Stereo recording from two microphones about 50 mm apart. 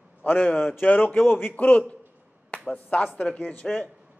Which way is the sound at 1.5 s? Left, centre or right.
Left.